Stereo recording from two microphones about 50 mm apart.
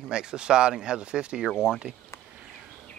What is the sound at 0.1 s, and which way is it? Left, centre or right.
Speech, centre.